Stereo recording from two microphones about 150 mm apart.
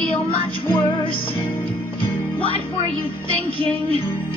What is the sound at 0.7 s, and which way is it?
Music, 35° left (ahead or behind).